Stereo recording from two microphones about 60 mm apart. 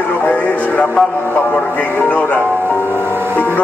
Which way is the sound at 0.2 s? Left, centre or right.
Left.